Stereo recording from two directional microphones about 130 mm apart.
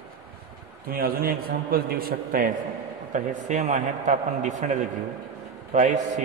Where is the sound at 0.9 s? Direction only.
90° right.